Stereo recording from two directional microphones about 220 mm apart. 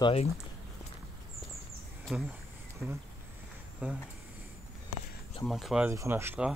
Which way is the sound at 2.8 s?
5° left (ahead or behind).